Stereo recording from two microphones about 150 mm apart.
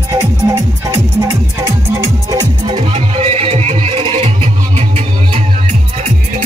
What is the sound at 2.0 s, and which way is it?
Music, 25° right (ahead or behind).